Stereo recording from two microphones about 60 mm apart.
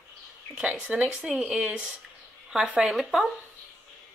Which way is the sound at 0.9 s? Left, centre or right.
Centre.